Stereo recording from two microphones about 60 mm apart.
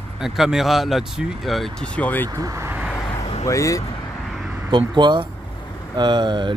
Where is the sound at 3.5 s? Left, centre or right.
Left.